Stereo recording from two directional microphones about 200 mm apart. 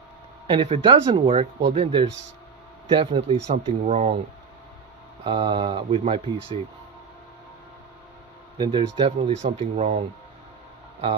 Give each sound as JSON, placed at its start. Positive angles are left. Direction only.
{"t": 0.5, "sound": "speech", "side_deg": -25}
{"t": 5.2, "sound": "speech", "side_deg": -25}
{"t": 8.5, "sound": "speech", "side_deg": -25}